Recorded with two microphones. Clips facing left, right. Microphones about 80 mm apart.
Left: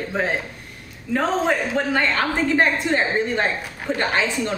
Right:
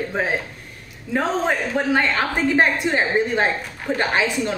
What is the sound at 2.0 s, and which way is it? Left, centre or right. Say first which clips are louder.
A woman's voice: even; centre.